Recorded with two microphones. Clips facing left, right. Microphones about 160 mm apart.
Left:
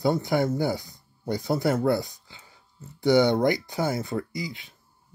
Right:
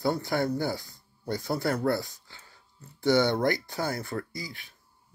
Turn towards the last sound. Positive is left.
turn(degrees=20)  # may be behind; listen again after turning